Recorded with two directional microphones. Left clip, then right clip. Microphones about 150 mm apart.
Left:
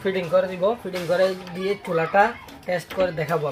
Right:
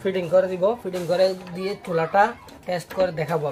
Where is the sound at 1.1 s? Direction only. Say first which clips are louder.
Even; 10° left (ahead or behind).